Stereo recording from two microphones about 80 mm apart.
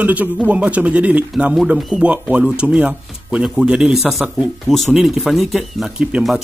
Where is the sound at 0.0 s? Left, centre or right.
Centre.